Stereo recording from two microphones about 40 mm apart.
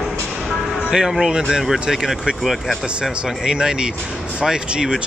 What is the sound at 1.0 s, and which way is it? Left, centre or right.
Speech, centre.